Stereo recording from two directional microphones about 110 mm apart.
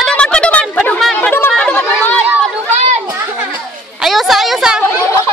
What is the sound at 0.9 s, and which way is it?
Chatter, 5° left (ahead or behind).